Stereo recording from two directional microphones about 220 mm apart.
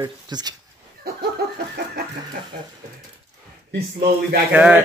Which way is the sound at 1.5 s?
45° right (ahead or behind).